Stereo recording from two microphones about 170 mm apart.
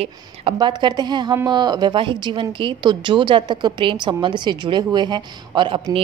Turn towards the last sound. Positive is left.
turn(degrees=-30)  # may be behind; listen again after turning